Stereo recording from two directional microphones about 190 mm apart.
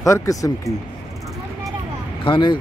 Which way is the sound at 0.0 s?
15° left (ahead or behind).